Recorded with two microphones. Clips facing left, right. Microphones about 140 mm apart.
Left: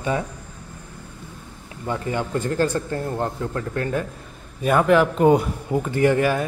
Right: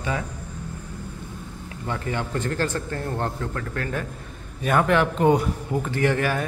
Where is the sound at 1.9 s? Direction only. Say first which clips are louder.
Left 3 dB; 15° left (ahead or behind).